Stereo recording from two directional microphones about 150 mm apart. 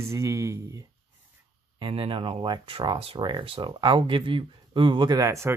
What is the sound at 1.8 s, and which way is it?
Speech, 35° right (ahead or behind).